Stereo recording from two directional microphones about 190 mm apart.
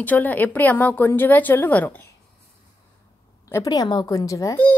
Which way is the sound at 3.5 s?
15° left (ahead or behind).